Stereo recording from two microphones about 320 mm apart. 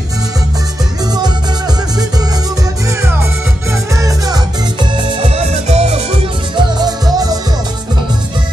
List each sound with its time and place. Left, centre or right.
3.9 s music: centre